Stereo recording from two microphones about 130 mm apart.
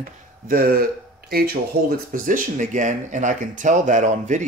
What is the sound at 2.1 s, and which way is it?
Speech, 90° right.